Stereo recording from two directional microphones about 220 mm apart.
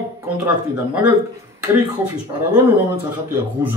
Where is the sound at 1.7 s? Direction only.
10° right (ahead or behind).